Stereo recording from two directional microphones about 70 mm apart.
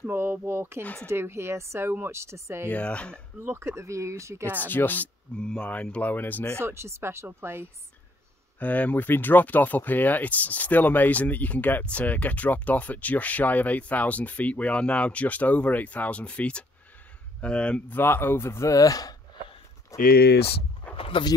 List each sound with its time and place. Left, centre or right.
0.0 s speech: right
2.7 s speech: centre
3.3 s speech: right
4.6 s speech: left
5.4 s speech: centre
6.6 s speech: right
8.5 s speech: left
17.8 s speech: left
18.7 s speech: left